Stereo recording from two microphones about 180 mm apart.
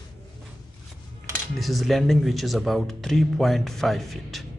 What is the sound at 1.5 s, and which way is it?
Speech, centre (ahead or behind).